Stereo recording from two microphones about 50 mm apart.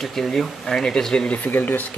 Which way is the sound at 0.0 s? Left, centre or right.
Centre.